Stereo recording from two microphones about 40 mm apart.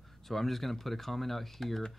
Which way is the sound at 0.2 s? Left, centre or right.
Centre.